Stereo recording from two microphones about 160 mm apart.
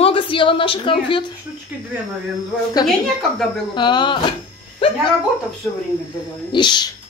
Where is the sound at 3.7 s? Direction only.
30° left (ahead or behind).